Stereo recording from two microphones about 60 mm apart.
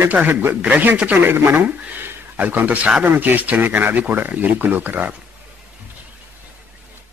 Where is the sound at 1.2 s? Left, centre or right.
Right.